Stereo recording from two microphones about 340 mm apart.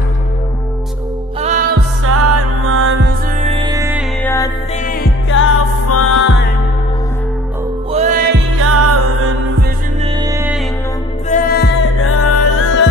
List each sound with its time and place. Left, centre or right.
1.4 s music: right
2.0 s music: right; by 4.0 s centre
4.2 s music: centre
5.3 s music: left
7.9 s music: right
8.5 s music: right
10.2 s music: centre
11.2 s music: left